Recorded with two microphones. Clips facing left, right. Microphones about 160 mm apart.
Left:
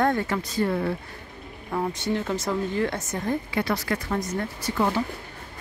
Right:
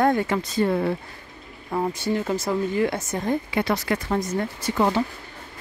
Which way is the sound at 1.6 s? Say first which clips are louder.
Right 2 dB; 10° right (ahead or behind).